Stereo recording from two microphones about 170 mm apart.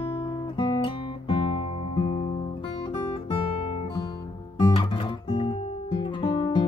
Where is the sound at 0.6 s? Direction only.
30° left (ahead or behind).